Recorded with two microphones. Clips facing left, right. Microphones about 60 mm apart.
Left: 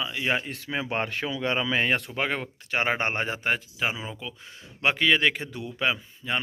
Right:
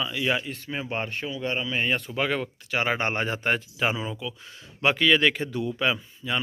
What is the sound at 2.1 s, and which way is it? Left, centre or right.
Speech, left.